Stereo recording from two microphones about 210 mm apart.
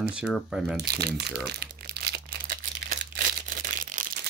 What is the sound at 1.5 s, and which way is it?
Crumpling, 45° right (ahead or behind).